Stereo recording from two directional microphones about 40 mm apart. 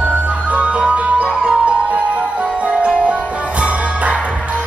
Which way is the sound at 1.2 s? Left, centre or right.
Centre.